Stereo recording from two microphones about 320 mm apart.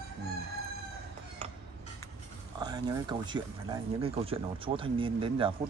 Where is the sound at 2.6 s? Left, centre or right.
Centre.